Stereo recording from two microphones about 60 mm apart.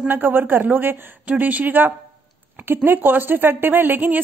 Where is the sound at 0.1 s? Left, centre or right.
Right.